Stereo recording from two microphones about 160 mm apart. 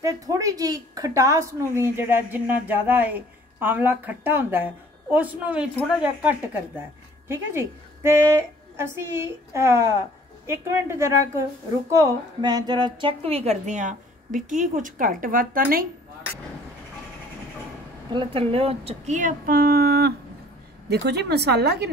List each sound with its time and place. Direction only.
0.0 s a woman's voice: 20° right (ahead or behind)
7.2 s a woman's voice: 15° right (ahead or behind); by 15.9 s 65° right (ahead or behind)
18.1 s a woman's voice: 35° right (ahead or behind); by 20.2 s 80° right
20.9 s speech: 90° right